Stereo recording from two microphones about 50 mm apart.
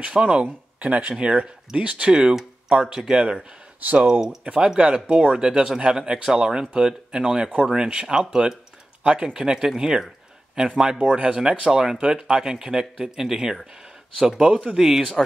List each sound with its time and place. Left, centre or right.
0.0 s speech: right
1.1 s speech: centre
11.0 s speech: right